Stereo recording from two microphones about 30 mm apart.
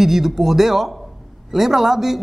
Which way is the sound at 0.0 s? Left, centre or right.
Centre.